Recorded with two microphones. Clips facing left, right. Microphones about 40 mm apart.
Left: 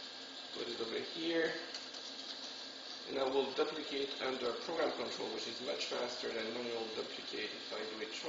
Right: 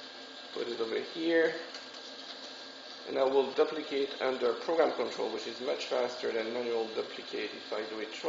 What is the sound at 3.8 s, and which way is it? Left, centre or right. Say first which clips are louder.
Mantra: right 7 dB; centre.